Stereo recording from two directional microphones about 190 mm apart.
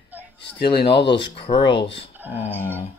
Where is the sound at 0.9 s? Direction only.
65° left (ahead or behind).